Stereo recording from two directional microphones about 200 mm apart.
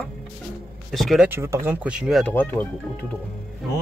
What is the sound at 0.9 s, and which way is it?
Speech, centre (ahead or behind).